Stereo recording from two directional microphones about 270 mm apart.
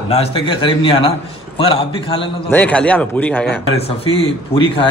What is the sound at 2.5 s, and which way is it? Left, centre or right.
Speech, centre.